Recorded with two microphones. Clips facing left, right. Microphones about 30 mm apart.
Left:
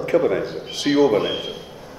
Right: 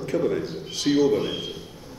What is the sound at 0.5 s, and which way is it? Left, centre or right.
A man's voice, centre.